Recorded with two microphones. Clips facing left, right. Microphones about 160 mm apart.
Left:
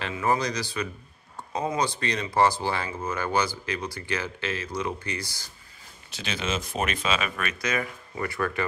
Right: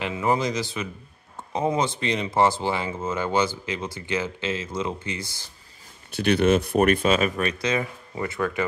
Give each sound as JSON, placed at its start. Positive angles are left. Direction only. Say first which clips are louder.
{"t": 0.0, "sound": "speech", "louder": "right 2 dB", "side_deg": -20}
{"t": 6.1, "sound": "speech", "louder": "right 11 dB", "side_deg": -60}